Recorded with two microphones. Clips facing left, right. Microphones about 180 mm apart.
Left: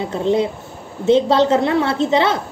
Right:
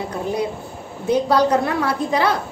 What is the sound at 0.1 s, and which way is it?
A woman's voice, 25° left (ahead or behind).